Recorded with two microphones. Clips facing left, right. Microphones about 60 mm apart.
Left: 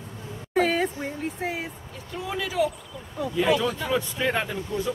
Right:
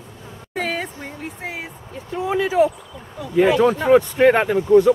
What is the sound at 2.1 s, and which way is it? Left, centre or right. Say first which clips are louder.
Speech: right 10 dB; right.